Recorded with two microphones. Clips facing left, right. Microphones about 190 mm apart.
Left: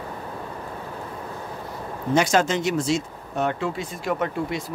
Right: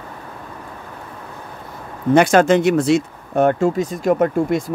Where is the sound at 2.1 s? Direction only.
60° right (ahead or behind).